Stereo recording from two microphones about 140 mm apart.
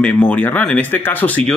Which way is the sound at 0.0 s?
10° left (ahead or behind).